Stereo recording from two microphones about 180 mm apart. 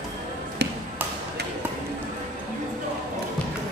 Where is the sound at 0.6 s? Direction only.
70° right (ahead or behind).